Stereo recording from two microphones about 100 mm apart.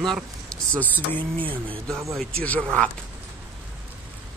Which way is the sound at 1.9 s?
30° right (ahead or behind).